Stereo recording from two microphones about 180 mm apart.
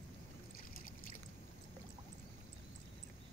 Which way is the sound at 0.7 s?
50° left (ahead or behind).